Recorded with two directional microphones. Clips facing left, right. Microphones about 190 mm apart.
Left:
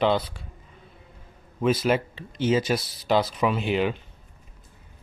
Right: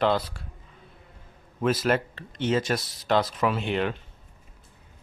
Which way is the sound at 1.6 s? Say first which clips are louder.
Left 2 dB; centre (ahead or behind).